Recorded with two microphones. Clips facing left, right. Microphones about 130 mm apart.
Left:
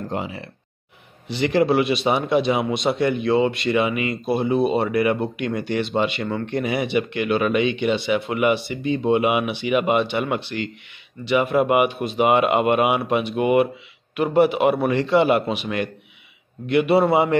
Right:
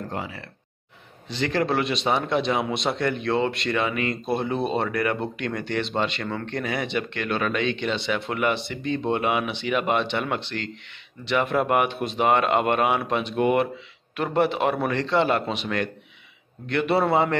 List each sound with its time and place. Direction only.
0.1 s speech: 20° left (ahead or behind)